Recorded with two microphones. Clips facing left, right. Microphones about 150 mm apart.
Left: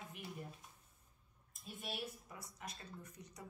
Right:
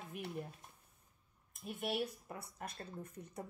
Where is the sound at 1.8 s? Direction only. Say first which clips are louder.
Right 8 dB; 60° right (ahead or behind).